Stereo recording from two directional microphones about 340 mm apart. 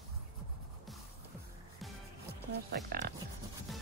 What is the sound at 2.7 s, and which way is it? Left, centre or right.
Speech, right.